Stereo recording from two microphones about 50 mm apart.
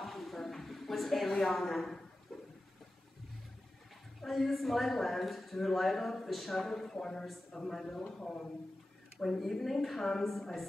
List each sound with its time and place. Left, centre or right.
0.0 s a sound: centre
4.2 s a woman's voice: centre
9.2 s a woman's voice: centre